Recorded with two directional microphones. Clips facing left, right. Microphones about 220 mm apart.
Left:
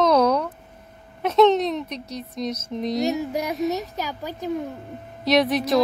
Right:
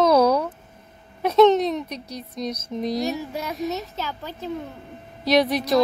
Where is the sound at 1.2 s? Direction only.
Centre (ahead or behind).